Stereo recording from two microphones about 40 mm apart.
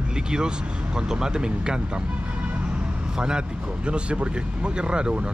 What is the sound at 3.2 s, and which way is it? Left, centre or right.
Speech, right.